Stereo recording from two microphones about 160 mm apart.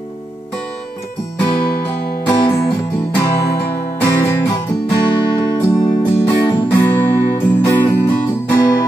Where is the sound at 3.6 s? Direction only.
15° left (ahead or behind).